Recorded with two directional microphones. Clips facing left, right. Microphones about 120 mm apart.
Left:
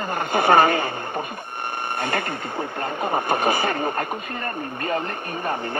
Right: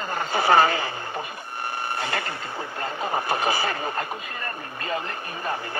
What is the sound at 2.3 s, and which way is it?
Speech, 25° left (ahead or behind).